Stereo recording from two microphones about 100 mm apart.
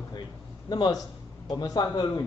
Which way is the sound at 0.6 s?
45° left (ahead or behind).